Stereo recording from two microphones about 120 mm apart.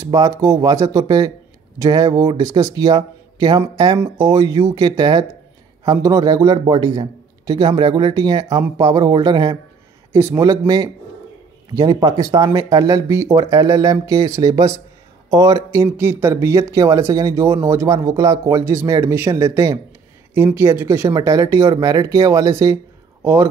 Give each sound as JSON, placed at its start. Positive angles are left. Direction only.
{"t": 0.0, "sound": "a man's voice", "side_deg": -30}
{"t": 10.1, "sound": "speech", "side_deg": -25}
{"t": 11.7, "sound": "a man's voice", "side_deg": -30}